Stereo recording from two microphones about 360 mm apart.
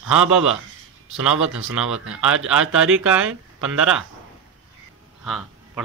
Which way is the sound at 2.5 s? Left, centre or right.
Centre.